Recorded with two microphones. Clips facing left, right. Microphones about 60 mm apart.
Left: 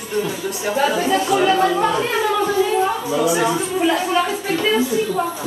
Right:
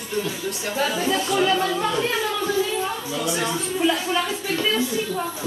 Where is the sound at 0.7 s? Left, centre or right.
Left.